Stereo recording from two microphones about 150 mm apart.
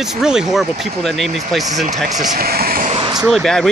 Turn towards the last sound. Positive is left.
turn(degrees=0)  # may be behind; listen again after turning